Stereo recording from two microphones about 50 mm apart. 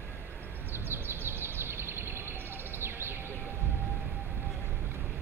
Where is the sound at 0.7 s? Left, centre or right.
Right.